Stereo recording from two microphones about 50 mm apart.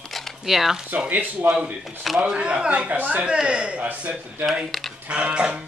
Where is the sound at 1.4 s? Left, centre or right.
Centre.